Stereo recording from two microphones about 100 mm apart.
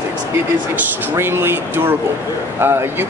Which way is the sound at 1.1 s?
25° right (ahead or behind).